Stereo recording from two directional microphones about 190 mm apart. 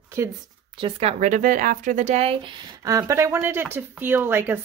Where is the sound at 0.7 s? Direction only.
30° right (ahead or behind).